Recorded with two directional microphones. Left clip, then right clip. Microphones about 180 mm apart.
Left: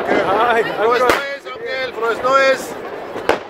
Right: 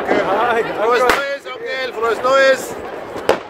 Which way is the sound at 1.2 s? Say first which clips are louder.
Right 2 dB; 60° right (ahead or behind).